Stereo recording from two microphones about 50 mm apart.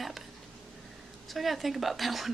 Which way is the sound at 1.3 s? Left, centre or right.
Centre.